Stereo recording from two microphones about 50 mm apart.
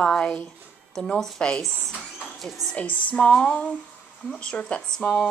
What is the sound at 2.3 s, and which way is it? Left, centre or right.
Speech, centre.